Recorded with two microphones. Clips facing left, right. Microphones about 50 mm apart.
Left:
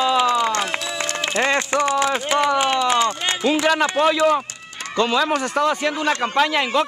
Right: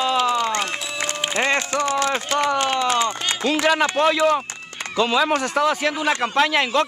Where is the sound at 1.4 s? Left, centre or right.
Left.